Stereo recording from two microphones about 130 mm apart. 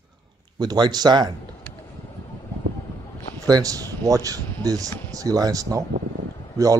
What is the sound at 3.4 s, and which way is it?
Speech, 30° right (ahead or behind).